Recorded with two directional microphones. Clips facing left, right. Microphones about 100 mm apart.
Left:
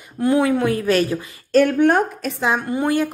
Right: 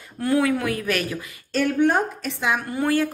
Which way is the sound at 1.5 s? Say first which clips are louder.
Left 5 dB; 50° left (ahead or behind).